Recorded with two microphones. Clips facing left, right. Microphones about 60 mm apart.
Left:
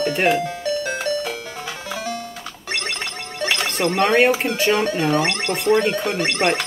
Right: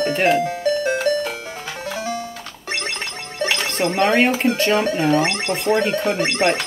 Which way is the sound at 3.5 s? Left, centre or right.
Centre.